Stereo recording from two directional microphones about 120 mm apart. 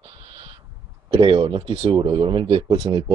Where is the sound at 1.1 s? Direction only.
45° right (ahead or behind).